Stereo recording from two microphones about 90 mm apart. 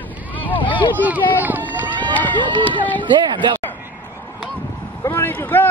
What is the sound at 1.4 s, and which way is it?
Speech, 20° right (ahead or behind).